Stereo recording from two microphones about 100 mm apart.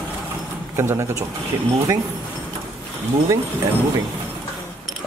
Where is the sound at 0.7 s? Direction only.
25° right (ahead or behind).